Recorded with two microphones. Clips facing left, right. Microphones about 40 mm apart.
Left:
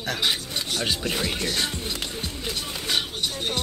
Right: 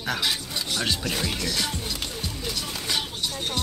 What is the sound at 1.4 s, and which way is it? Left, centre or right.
Music, left.